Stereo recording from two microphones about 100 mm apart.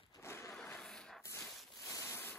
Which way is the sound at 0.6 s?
5° left (ahead or behind).